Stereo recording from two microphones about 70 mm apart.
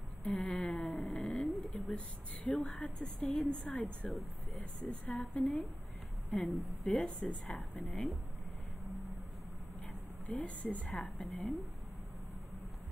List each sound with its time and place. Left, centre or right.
0.3 s a sound: centre
2.5 s a woman's voice: centre
8.8 s vehicle: centre
10.4 s a woman's voice: centre
10.9 s a woman's voice: centre